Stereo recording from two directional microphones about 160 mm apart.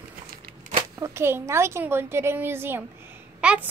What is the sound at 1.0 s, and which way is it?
A woman's voice, 15° right (ahead or behind).